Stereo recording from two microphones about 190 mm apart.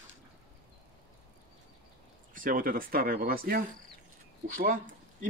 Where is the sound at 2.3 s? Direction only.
45° right (ahead or behind).